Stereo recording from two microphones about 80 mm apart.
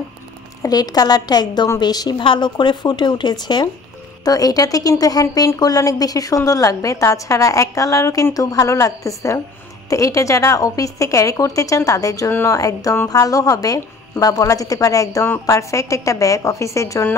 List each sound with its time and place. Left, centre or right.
0.6 s a woman's voice: left
2.1 s speech: left
4.2 s a woman's voice: left